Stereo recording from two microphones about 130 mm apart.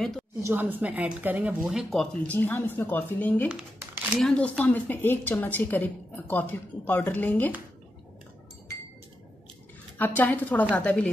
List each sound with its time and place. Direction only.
0.4 s a woman's voice: 15° right (ahead or behind)
1.6 s speech: 5° right (ahead or behind)
2.2 s a woman's voice: 15° left (ahead or behind)
3.4 s speech: 5° right (ahead or behind)
4.6 s a woman's voice: 10° left (ahead or behind)
9.9 s a woman's voice: 15° left (ahead or behind)